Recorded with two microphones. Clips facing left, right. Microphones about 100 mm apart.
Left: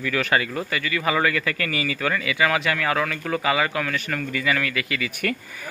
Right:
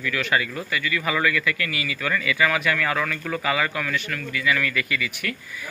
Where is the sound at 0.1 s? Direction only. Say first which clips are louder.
Left 2 dB; 35° left (ahead or behind).